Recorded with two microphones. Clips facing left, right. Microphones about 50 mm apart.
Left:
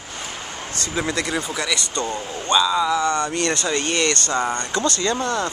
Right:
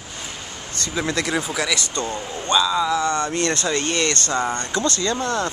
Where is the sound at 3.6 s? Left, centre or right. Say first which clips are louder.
Even; centre.